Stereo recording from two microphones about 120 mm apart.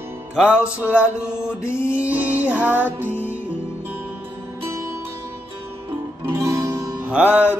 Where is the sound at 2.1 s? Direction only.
10° right (ahead or behind).